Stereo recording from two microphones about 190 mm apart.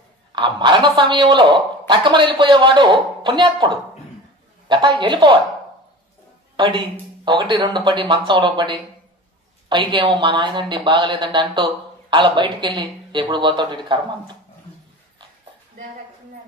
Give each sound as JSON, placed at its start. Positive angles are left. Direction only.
{"t": 0.3, "sound": "speech", "side_deg": -25}
{"t": 6.5, "sound": "speech", "side_deg": -25}